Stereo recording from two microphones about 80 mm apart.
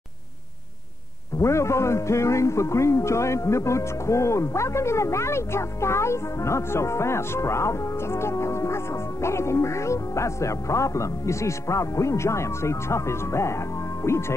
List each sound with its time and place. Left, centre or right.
1.4 s a man's voice: left